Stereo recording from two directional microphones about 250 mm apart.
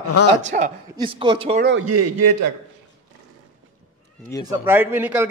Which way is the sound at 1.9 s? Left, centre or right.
Right.